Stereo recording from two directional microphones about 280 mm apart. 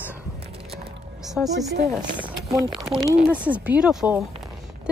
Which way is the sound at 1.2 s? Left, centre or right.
Centre.